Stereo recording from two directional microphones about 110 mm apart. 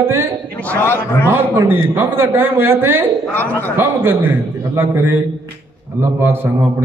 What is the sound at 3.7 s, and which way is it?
A man's voice, 20° right (ahead or behind).